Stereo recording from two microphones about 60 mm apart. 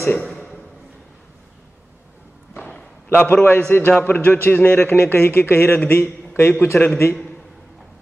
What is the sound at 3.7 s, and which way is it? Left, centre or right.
A man's voice, left.